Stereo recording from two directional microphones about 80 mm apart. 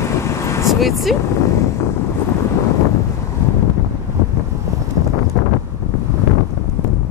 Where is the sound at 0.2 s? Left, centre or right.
Left.